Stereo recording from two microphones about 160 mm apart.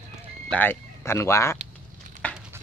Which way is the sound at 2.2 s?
5° left (ahead or behind).